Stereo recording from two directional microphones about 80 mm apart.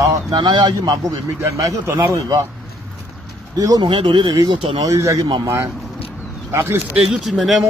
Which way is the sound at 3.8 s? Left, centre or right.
Right.